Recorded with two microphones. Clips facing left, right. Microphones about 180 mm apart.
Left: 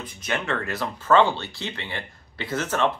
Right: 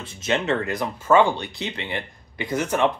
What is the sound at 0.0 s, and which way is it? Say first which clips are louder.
Speech: right 5 dB; 25° right (ahead or behind).